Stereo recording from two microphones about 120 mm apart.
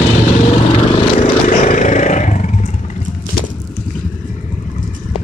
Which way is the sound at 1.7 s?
90° left.